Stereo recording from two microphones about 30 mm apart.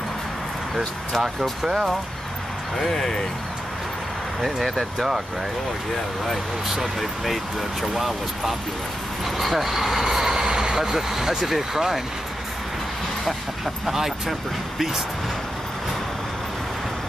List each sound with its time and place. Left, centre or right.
1.1 s speech: centre
1.6 s speech: centre
2.8 s speech: centre
4.4 s speech: centre
4.9 s speech: centre
6.7 s speech: centre
10.4 s vehicle: right
11.0 s speech: centre
13.8 s speech: centre